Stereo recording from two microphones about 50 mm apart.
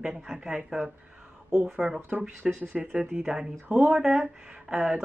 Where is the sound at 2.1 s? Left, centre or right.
Right.